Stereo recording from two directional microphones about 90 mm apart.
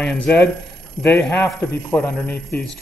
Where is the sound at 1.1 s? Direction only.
30° left (ahead or behind).